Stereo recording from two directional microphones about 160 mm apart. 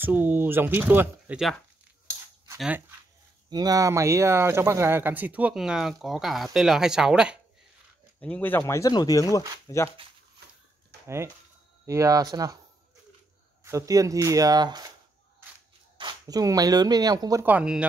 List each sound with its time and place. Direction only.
0.0 s speech: 10° right (ahead or behind)
3.4 s speech: 25° right (ahead or behind); by 7.3 s 5° right (ahead or behind)
8.2 s speech: 10° left (ahead or behind)
10.9 s a sound: 90° right
11.8 s speech: 20° right (ahead or behind)
13.7 s speech: 20° right (ahead or behind)
16.0 s speech: 25° right (ahead or behind)
17.5 s speech: 5° right (ahead or behind)